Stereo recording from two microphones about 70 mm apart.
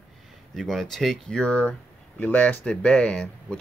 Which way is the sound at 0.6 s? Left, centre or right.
Centre.